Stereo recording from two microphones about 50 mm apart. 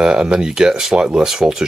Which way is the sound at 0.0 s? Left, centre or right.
Centre.